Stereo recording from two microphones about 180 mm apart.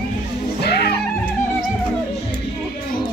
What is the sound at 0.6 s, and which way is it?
Music, 65° left (ahead or behind).